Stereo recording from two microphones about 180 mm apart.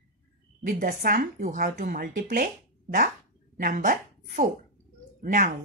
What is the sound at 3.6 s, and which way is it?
Speech, 50° right (ahead or behind).